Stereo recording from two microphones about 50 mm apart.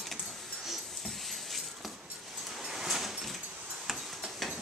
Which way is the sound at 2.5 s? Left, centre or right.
Centre.